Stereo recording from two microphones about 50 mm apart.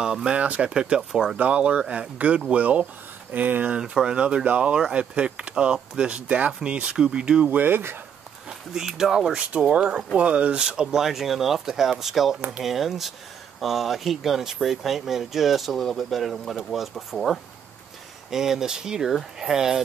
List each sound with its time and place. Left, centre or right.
0.0 s speech: centre
0.4 s speech: right
3.3 s speech: right
3.6 s speech: right
7.4 s speech: right
8.5 s speech: centre